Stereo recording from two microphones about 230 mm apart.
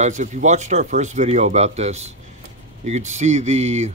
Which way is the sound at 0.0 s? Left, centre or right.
Right.